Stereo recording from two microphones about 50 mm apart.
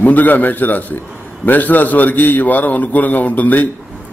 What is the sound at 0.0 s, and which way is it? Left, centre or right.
A man's voice, left.